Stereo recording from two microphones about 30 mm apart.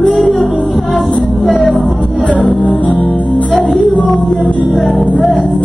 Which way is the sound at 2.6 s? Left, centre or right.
Left.